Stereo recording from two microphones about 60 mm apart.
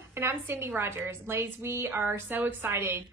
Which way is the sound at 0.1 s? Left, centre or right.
Right.